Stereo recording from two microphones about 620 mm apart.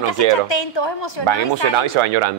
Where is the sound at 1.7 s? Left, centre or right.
Right.